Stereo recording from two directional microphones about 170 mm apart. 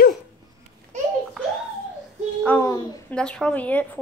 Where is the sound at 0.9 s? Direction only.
45° right (ahead or behind).